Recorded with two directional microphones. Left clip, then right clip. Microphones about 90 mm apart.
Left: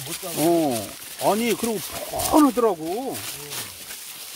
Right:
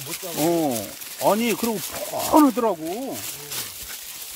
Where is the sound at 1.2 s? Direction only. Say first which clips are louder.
Right 1 dB; 35° right (ahead or behind).